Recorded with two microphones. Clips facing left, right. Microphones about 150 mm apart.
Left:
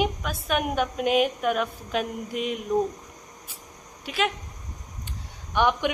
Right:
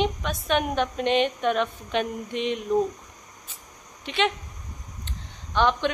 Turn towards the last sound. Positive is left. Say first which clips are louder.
# even
turn(degrees=10)  # may be behind; listen again after turning